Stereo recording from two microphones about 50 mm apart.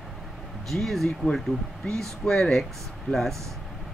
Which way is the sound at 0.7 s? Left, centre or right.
Centre.